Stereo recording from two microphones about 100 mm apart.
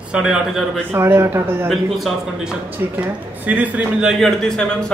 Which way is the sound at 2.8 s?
25° right (ahead or behind).